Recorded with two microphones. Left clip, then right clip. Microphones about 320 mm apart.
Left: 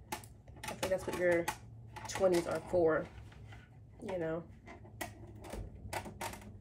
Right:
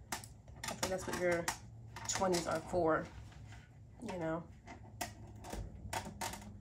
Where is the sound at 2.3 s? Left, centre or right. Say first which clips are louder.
Left 3 dB; centre.